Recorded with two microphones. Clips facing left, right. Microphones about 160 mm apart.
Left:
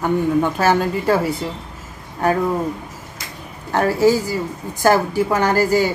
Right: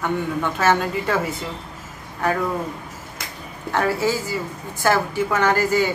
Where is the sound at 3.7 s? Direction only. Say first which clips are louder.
Left 6 dB; 40° left (ahead or behind).